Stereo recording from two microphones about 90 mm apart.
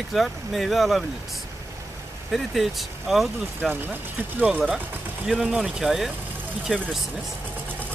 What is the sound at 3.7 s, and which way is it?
Speech, 20° right (ahead or behind).